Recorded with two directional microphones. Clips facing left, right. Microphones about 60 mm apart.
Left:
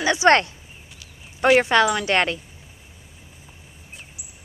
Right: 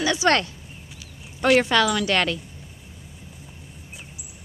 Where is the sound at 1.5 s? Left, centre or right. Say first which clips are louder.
Left 2 dB; left.